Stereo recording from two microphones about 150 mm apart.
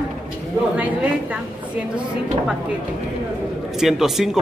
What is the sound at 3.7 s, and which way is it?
Speech, 5° right (ahead or behind).